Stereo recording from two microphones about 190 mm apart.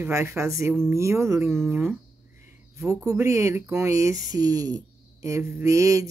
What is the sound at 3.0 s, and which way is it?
Speech, 15° right (ahead or behind).